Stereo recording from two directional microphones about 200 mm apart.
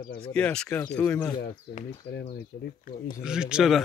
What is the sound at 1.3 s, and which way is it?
Speech, 45° left (ahead or behind).